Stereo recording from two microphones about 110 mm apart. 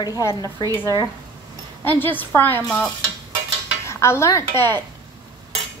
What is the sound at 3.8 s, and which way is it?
Dishes, 25° left (ahead or behind).